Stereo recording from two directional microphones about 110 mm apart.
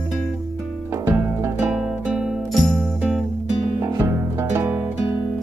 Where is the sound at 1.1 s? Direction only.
20° right (ahead or behind).